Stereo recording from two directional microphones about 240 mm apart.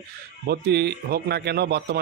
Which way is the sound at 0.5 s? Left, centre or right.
Right.